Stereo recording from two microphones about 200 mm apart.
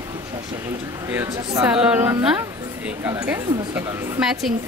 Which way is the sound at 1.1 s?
15° right (ahead or behind).